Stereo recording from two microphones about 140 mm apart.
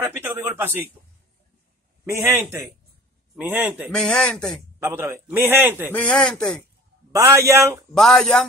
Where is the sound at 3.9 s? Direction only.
5° left (ahead or behind).